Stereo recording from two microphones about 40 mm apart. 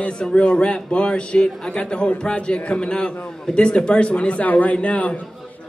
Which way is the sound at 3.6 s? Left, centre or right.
Left.